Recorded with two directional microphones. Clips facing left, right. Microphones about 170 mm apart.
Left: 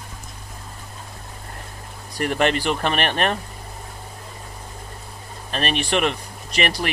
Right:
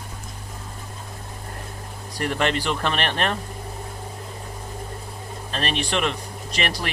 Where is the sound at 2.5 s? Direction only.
15° left (ahead or behind).